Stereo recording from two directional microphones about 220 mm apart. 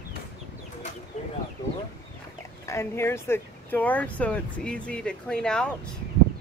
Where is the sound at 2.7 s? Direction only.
10° left (ahead or behind).